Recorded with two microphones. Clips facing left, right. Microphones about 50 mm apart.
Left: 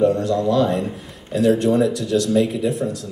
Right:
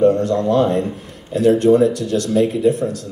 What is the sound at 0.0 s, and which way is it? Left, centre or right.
Speech, right.